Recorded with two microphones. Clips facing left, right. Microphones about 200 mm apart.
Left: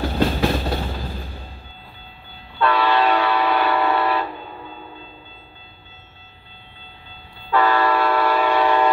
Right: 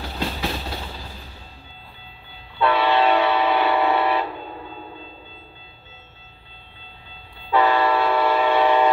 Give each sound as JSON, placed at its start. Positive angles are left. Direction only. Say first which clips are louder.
{"t": 0.0, "sound": "train", "louder": "left 8 dB", "side_deg": 50}
{"t": 2.6, "sound": "train", "louder": "even", "side_deg": -20}
{"t": 7.5, "sound": "train", "louder": "even", "side_deg": -20}